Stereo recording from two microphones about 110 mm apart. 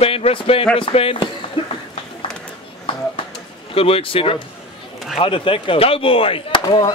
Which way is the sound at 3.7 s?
60° left (ahead or behind).